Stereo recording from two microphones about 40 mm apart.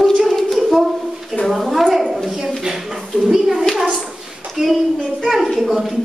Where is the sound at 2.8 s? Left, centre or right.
Centre.